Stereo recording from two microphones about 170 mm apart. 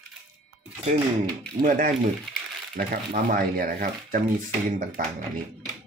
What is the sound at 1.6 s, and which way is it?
Speech, 55° right (ahead or behind).